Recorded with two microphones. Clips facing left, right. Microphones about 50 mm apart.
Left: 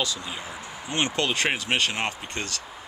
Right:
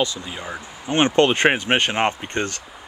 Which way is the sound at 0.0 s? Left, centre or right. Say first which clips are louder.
Right 5 dB; right.